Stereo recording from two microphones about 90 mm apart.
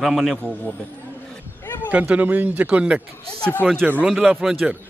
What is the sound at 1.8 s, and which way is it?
Speech, 15° right (ahead or behind).